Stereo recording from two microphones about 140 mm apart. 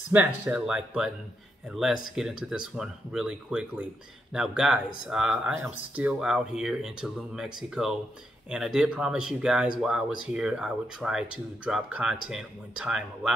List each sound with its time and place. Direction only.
0.1 s speech: 15° right (ahead or behind)